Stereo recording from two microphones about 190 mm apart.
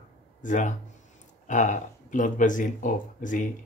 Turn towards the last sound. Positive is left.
turn(degrees=45)  # may be behind; listen again after turning